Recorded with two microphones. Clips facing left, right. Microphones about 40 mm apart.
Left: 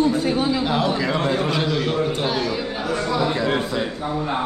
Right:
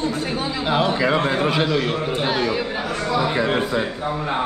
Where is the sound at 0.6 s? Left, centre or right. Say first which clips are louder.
Right 2 dB; centre.